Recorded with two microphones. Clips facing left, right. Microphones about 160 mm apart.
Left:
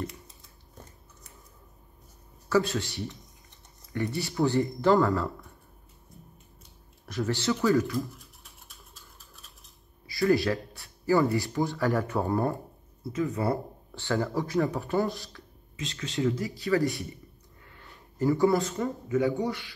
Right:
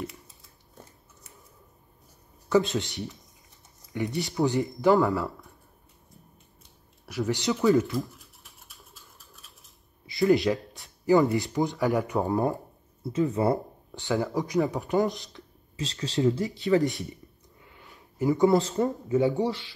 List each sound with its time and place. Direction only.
0.0 s scissors: 5° right (ahead or behind)
2.5 s speech: 20° right (ahead or behind)
7.1 s speech: 15° right (ahead or behind)
10.0 s speech: 20° right (ahead or behind)
15.7 s speech: 35° right (ahead or behind)
16.3 s speech: 20° right (ahead or behind)
17.6 s a sound: 15° right (ahead or behind)
18.2 s speech: 20° right (ahead or behind)